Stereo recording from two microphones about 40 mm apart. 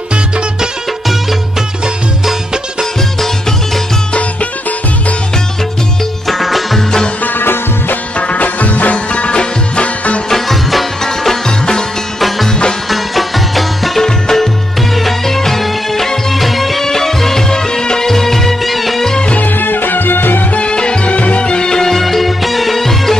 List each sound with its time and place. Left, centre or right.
4.1 s music: left
6.2 s music: centre
7.3 s music: left
8.2 s music: left
8.9 s music: left
10.3 s music: centre
11.1 s music: centre
12.9 s music: centre
14.0 s music: centre
19.4 s music: left
20.5 s music: left; by 23.1 s centre